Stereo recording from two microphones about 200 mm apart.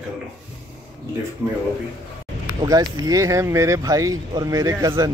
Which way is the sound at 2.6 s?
20° right (ahead or behind).